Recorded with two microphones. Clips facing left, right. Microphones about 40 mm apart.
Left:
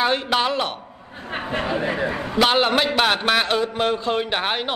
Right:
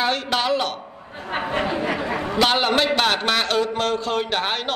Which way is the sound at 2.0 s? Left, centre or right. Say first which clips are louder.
Right 1 dB; right.